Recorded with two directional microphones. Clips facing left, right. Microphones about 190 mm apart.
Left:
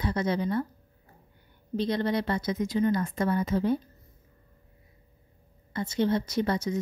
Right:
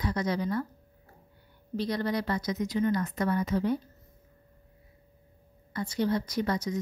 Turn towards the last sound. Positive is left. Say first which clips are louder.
# left 2 dB
turn(degrees=25)  # may be behind; listen again after turning